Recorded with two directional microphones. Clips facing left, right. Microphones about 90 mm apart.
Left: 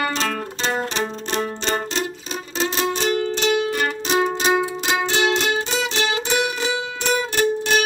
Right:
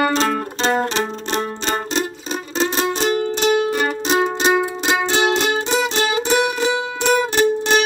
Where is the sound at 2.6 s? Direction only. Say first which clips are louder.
Right 2 dB; 25° right (ahead or behind).